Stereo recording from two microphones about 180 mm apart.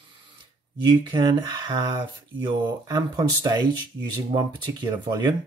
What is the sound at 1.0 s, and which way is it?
Speech, 25° right (ahead or behind).